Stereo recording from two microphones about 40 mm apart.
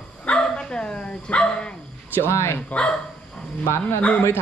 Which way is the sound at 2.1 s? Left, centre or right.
Left.